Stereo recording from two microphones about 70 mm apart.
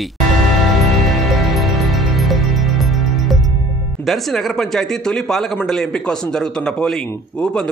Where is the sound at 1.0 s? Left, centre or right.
Centre.